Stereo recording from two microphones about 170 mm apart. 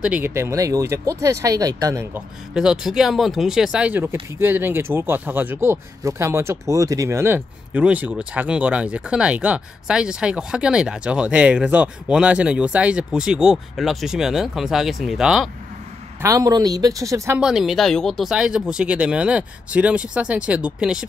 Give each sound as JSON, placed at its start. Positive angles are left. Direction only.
{"t": 0.0, "sound": "speech", "side_deg": -10}
{"t": 2.1, "sound": "speech", "side_deg": -5}
{"t": 16.2, "sound": "speech", "side_deg": -20}
{"t": 17.4, "sound": "speech", "side_deg": -5}